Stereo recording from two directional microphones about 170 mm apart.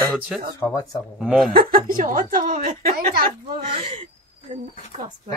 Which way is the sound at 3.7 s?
35° right (ahead or behind).